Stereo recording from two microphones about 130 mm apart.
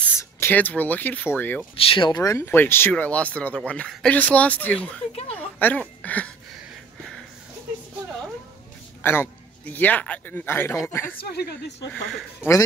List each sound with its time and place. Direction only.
0.2 s speech: 15° left (ahead or behind)
1.9 s speech: 35° left (ahead or behind); by 6.3 s 10° left (ahead or behind)
9.0 s a man's voice: 15° left (ahead or behind)
11.9 s speech: centre (ahead or behind)
12.4 s speech: 25° left (ahead or behind)